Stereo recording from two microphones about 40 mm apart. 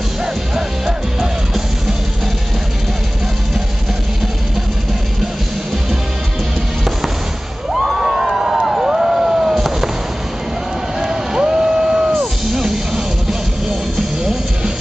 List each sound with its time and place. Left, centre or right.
0.6 s music: centre
7.7 s a sound: centre
11.0 s boat: centre
12.2 s music: centre